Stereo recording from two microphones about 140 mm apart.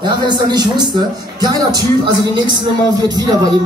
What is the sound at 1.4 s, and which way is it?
Music, 30° right (ahead or behind).